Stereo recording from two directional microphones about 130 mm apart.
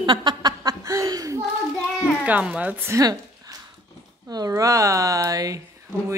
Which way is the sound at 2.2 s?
10° right (ahead or behind).